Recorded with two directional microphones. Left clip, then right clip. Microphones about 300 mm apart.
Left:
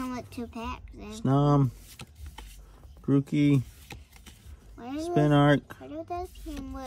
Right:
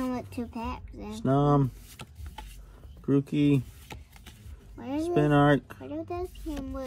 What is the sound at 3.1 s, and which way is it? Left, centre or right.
Speech, left.